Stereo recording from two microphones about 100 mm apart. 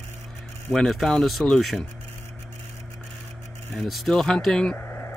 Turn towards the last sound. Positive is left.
turn(degrees=20)  # may be behind; listen again after turning